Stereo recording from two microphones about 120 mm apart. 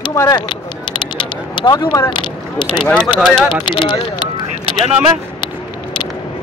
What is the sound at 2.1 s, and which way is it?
Speech, 40° left (ahead or behind).